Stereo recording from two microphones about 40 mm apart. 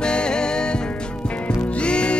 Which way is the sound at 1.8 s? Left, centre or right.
Left.